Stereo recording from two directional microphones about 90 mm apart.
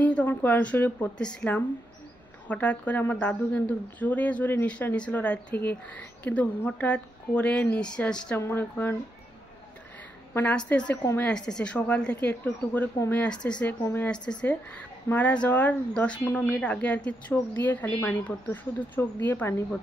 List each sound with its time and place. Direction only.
0.0 s a woman's voice: 15° left (ahead or behind)
8.4 s speech: 25° left (ahead or behind)
10.5 s a woman's voice: 10° left (ahead or behind)